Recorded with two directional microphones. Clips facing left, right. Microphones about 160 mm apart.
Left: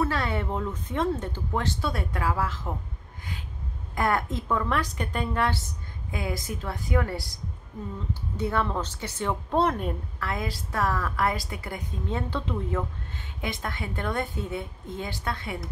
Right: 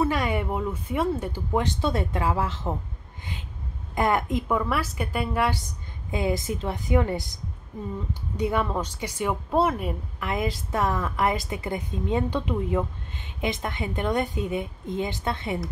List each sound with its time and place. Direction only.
0.0 s speech: 15° right (ahead or behind)
3.9 s speech: 20° right (ahead or behind)
6.1 s a woman's voice: 25° right (ahead or behind); by 9.9 s 5° right (ahead or behind)
10.2 s a woman's voice: 20° right (ahead or behind)